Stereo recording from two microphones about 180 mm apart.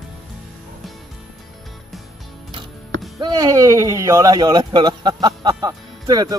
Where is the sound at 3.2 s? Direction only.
20° right (ahead or behind).